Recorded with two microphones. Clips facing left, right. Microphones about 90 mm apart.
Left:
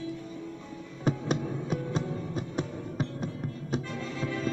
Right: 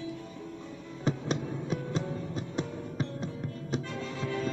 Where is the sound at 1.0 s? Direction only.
10° left (ahead or behind).